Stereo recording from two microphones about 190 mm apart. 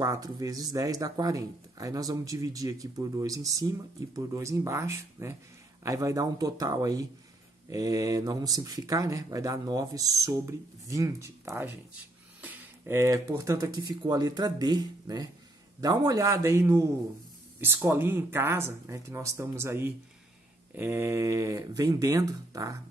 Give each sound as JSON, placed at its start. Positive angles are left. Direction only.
{"t": 0.0, "sound": "speech", "side_deg": -20}